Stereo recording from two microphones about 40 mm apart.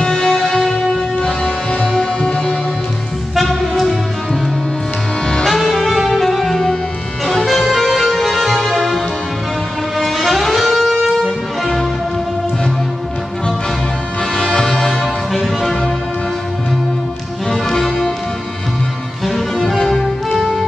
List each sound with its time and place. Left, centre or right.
0.0 s music: centre
2.0 s music: left
3.3 s music: centre
5.5 s saxophone: centre
7.2 s music: centre
14.3 s music: centre
17.5 s music: centre
19.2 s music: centre